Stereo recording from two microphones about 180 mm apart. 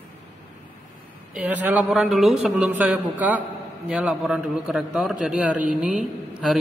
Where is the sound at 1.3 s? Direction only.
5° right (ahead or behind).